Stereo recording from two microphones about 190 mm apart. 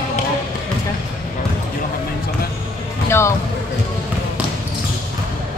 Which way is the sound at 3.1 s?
15° left (ahead or behind).